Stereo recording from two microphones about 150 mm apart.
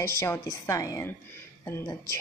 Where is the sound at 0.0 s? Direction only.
20° left (ahead or behind).